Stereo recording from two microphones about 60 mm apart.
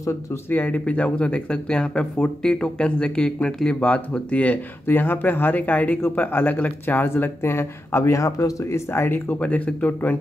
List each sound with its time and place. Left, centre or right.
0.5 s speech: left
4.8 s speech: left
8.0 s speech: left
9.4 s speech: left